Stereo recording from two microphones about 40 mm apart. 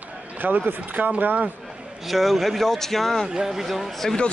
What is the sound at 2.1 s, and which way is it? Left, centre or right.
Speech, centre.